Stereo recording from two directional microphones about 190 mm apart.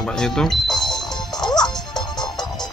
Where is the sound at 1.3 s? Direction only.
20° left (ahead or behind).